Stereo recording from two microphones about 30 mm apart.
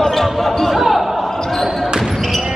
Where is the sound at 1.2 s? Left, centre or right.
Left.